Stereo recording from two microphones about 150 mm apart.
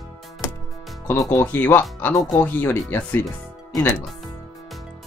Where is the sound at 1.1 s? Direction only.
20° left (ahead or behind).